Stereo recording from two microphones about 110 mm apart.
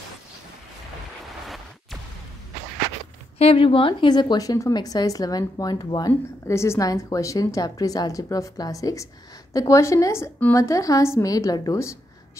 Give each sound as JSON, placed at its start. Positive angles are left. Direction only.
{"t": 3.3, "sound": "speech", "side_deg": 60}
{"t": 6.4, "sound": "a woman's voice", "side_deg": 25}